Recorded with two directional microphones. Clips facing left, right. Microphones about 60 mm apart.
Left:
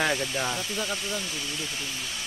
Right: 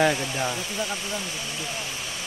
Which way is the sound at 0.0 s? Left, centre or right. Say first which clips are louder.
Right 4 dB; centre.